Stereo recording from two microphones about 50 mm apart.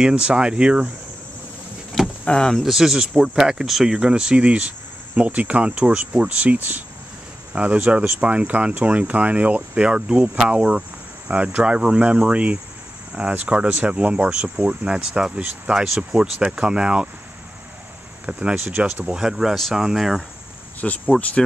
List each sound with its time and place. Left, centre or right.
0.0 s speech: right
2.2 s speech: centre
2.6 s speech: centre; by 9.8 s right
9.8 s speech: centre
18.2 s speech: right; by 20.2 s centre
20.8 s speech: left